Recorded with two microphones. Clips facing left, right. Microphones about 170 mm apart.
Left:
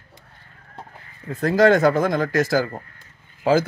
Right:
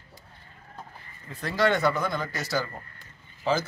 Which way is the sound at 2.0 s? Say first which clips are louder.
Left 10 dB; 90° left.